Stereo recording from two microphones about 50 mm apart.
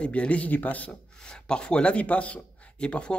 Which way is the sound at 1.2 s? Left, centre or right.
Centre.